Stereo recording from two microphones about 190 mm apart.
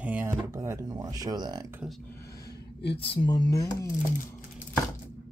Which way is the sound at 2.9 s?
25° left (ahead or behind).